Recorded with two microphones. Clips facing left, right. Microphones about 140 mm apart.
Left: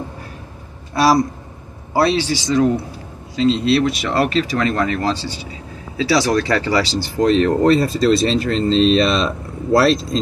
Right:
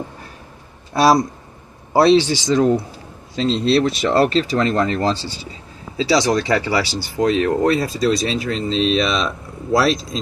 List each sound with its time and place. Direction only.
2.0 s speech: 25° right (ahead or behind); by 10.2 s centre (ahead or behind)